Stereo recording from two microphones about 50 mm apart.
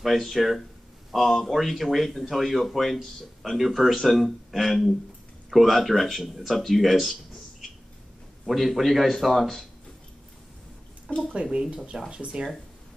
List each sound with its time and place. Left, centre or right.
0.0 s speech: centre
8.5 s speech: centre
11.1 s speech: centre
11.5 s speech: centre